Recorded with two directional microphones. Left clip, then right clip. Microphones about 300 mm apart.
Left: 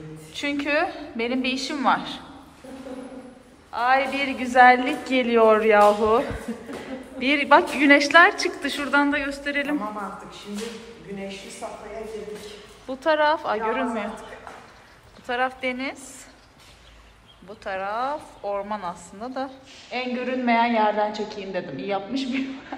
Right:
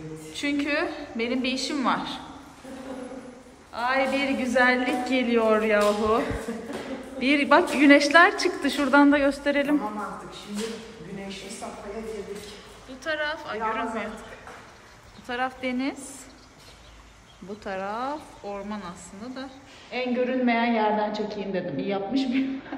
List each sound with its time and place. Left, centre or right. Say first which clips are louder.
0.3 s a woman's voice: left 2 dB; centre
3.7 s a woman's voice: left 3 dB; centre
11.6 s a sound: left 4 dB; left
13.0 s a woman's voice: left 9 dB; centre
15.2 s a woman's voice: left 4 dB; centre
17.6 s a woman's voice: left 4 dB; centre